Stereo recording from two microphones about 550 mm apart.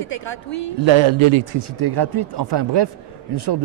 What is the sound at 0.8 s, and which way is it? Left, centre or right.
Speech, right.